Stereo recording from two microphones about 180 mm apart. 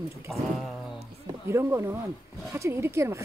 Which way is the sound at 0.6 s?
Centre (ahead or behind).